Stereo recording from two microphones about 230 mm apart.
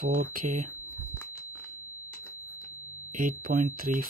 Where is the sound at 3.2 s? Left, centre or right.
Right.